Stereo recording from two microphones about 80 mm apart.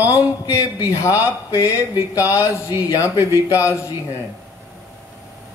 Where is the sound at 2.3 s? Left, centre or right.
Left.